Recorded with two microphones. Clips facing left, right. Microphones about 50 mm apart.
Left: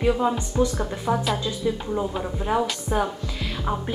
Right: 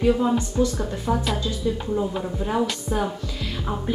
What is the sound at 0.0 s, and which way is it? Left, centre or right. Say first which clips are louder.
Speech: right 2 dB; centre.